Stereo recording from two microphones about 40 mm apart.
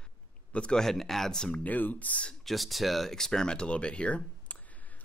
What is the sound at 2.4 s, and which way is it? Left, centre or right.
Speech, centre.